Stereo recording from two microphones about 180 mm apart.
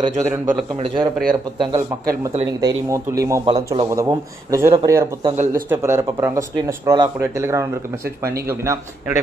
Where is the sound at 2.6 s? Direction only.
20° right (ahead or behind).